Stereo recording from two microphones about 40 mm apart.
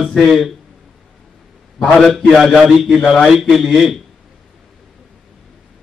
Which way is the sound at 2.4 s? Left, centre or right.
Centre.